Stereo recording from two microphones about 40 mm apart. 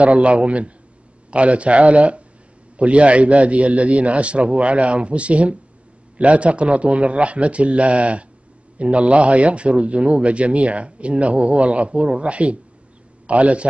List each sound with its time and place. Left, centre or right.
0.0 s speech: right